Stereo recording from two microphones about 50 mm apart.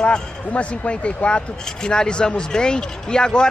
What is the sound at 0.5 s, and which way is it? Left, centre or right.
Speech, left.